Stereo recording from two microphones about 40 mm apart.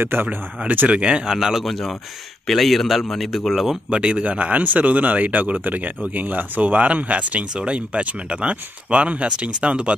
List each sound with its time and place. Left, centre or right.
0.0 s speech: right
0.7 s speech: right
1.3 s speech: centre
1.6 s a man's voice: centre
3.9 s speech: right